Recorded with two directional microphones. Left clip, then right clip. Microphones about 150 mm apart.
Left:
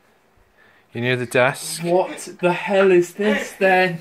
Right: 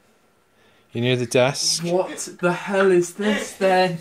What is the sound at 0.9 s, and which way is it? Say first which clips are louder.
Speech: left 1 dB; 50° right (ahead or behind).